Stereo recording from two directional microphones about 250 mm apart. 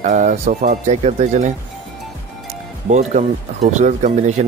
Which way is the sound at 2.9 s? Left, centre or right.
Right.